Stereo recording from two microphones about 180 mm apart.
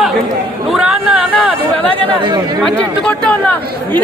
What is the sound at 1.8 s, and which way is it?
Speech, 30° right (ahead or behind).